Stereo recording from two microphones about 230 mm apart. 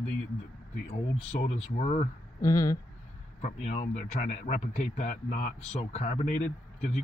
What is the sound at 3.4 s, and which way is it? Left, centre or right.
Speech, left.